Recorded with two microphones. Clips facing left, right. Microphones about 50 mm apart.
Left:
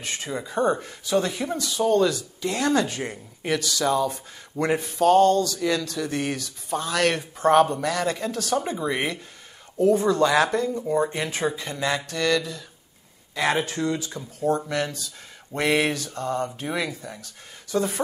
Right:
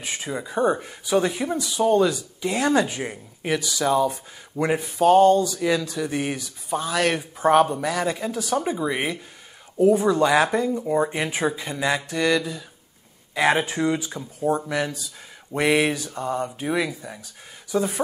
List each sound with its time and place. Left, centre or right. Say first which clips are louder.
0.0 s speech: right 1 dB; centre